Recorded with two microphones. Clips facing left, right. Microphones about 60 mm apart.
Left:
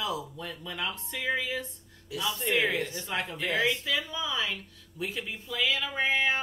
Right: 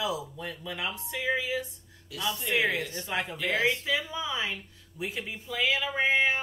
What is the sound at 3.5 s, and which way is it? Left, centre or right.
Speech, right.